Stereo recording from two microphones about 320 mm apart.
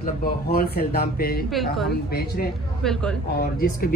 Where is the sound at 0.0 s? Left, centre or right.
Left.